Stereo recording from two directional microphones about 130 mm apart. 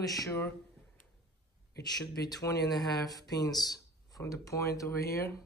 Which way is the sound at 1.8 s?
30° left (ahead or behind).